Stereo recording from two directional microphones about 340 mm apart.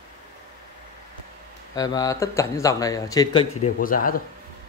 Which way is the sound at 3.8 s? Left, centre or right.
Left.